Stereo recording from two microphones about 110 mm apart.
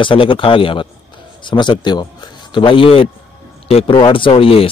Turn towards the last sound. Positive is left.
turn(degrees=60)  # may be behind; listen again after turning